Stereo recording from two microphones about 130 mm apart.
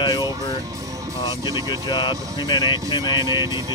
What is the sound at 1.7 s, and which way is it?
Speech, 35° left (ahead or behind).